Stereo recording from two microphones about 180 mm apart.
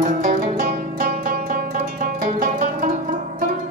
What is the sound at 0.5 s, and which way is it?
Music, 45° right (ahead or behind).